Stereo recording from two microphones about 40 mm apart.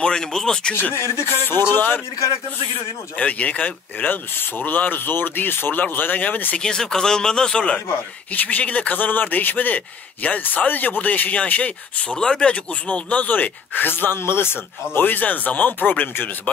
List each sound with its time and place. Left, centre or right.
0.0 s speech: centre
0.9 s speech: left
3.2 s speech: left
4.1 s speech: left
6.6 s speech: centre
8.3 s speech: left
12.2 s speech: centre
12.5 s speech: left
15.0 s speech: left